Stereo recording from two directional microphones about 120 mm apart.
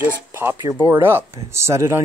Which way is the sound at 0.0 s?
20° right (ahead or behind).